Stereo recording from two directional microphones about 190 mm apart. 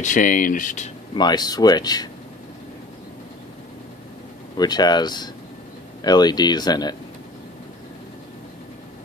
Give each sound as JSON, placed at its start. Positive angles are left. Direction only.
{"t": 0.0, "sound": "speech", "side_deg": 40}
{"t": 1.1, "sound": "speech", "side_deg": 20}
{"t": 4.6, "sound": "speech", "side_deg": 20}